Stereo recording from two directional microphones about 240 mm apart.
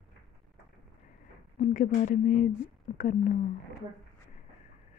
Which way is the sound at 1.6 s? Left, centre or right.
Left.